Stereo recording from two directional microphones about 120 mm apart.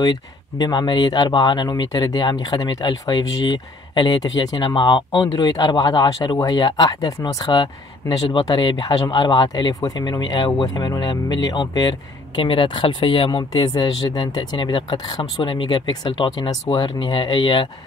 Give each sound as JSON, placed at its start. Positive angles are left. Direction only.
{"t": 0.0, "sound": "speech", "side_deg": 35}